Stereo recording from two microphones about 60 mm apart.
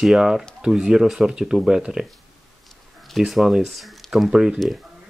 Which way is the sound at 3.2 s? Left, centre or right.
Centre.